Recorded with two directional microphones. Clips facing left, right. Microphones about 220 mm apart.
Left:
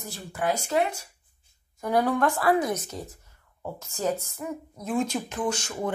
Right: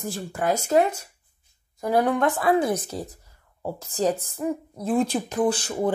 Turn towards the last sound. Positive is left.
turn(degrees=-35)  # may be behind; listen again after turning